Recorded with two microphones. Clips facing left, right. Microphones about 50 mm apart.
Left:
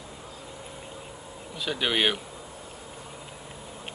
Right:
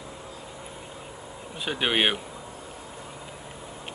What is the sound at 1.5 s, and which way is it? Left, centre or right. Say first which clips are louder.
Speech: right 1 dB; right.